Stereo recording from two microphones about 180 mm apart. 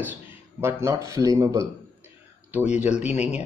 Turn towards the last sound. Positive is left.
turn(degrees=-5)  # may be behind; listen again after turning